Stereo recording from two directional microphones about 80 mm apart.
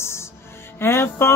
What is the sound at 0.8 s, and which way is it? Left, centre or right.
Music, left.